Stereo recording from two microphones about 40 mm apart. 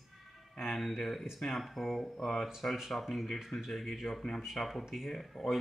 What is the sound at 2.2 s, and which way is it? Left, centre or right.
Speech, centre.